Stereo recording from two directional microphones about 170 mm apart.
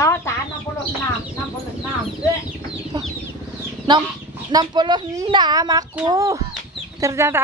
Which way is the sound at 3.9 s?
25° right (ahead or behind).